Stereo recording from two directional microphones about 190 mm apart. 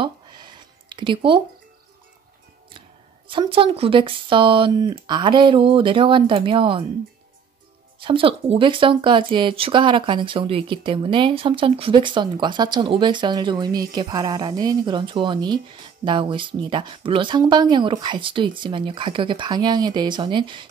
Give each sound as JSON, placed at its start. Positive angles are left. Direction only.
{"t": 0.0, "sound": "a sound", "side_deg": -25}
{"t": 3.3, "sound": "speech", "side_deg": -25}
{"t": 8.0, "sound": "speech", "side_deg": -30}